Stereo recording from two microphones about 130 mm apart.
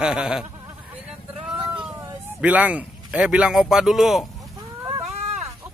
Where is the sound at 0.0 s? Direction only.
5° right (ahead or behind).